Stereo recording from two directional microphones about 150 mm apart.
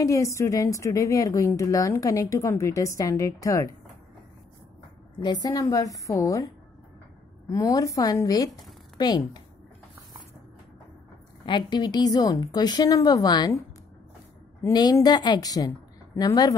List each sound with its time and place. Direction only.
0.0 s a woman's voice: 20° left (ahead or behind)
5.2 s a woman's voice: 25° left (ahead or behind)
7.4 s a woman's voice: 20° left (ahead or behind)
11.4 s a woman's voice: 30° left (ahead or behind)
14.6 s a woman's voice: 25° left (ahead or behind)